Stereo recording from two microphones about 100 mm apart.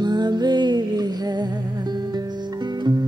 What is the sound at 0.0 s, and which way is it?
Music, 45° right (ahead or behind).